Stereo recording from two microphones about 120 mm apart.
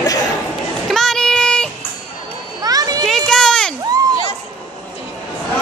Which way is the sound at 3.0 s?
5° left (ahead or behind).